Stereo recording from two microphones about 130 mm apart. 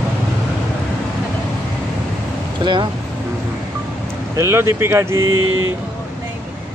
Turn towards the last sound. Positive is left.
turn(degrees=-20)  # may be behind; listen again after turning